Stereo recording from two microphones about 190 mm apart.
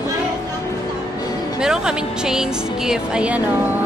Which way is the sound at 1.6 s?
5° right (ahead or behind).